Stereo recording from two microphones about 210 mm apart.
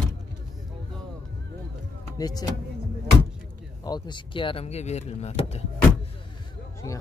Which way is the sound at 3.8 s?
20° left (ahead or behind).